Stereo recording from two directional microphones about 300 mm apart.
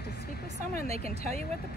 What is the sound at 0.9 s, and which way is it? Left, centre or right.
Speech, right.